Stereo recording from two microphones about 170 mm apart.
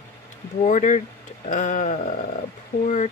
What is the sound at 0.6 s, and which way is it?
Speech, 45° left (ahead or behind).